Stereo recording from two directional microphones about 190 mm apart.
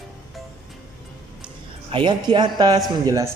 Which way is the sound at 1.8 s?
25° right (ahead or behind).